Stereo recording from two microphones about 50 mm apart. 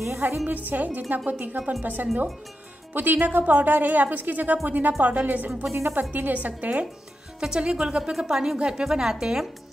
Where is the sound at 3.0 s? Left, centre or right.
Right.